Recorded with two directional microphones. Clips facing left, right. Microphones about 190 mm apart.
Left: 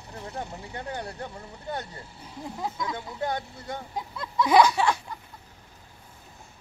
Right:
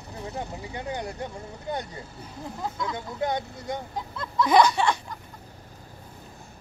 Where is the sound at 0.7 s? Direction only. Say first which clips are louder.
Right 2 dB; 15° right (ahead or behind).